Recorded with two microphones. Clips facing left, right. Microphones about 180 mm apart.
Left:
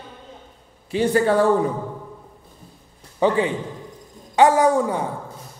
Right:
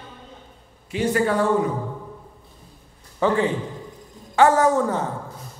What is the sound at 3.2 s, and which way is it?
Speech, 20° left (ahead or behind).